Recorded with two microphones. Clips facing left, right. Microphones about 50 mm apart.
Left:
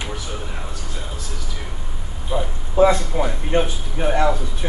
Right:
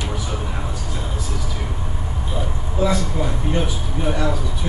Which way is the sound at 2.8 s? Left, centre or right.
Left.